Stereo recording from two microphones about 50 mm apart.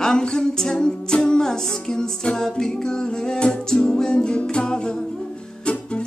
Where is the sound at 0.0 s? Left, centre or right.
Centre.